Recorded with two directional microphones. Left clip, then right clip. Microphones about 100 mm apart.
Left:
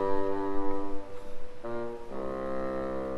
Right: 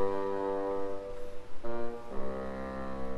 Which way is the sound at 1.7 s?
15° left (ahead or behind).